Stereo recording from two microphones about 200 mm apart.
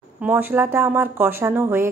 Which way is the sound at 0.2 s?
10° right (ahead or behind).